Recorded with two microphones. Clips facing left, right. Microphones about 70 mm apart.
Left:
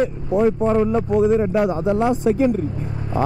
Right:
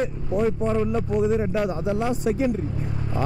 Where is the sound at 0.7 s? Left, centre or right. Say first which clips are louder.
Left 6 dB; left.